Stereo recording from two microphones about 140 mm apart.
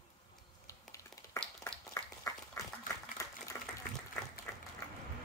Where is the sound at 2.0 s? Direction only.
20° left (ahead or behind).